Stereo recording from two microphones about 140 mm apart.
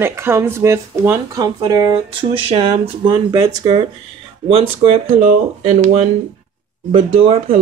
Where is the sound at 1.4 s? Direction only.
30° right (ahead or behind).